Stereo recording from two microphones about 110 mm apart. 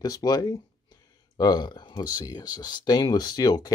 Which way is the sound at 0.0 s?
35° left (ahead or behind).